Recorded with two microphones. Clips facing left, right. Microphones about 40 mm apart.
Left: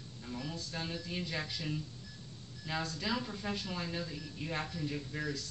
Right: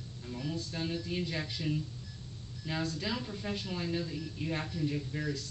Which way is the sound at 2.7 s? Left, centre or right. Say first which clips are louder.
Right 1 dB; centre.